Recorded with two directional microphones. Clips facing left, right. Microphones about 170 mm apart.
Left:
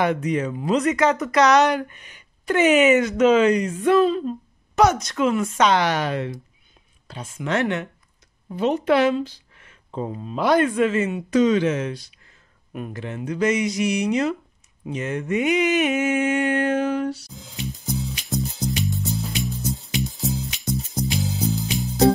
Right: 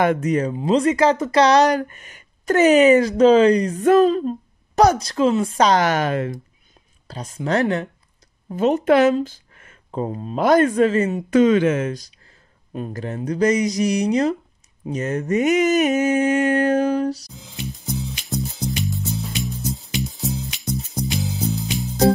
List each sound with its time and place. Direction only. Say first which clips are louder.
0.0 s speech: right 3 dB; 45° right (ahead or behind)
0.6 s speech: right 3 dB; 30° right (ahead or behind); by 6.4 s 50° right (ahead or behind)
7.1 s speech: right 3 dB; 40° right (ahead or behind)
8.5 s speech: right 3 dB; 45° right (ahead or behind)
12.7 s speech: right 3 dB; 35° right (ahead or behind)
17.3 s music: even; centre (ahead or behind)